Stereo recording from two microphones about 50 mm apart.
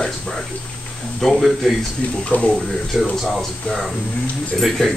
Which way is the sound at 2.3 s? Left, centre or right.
Left.